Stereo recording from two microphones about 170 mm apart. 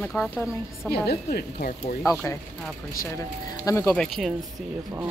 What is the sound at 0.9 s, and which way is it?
Speech, 65° left (ahead or behind).